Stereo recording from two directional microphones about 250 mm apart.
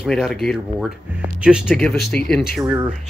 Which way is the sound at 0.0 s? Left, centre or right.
Centre.